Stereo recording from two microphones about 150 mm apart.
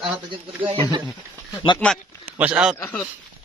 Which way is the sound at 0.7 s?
35° right (ahead or behind).